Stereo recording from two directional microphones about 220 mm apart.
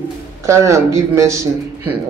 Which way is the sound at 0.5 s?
15° right (ahead or behind).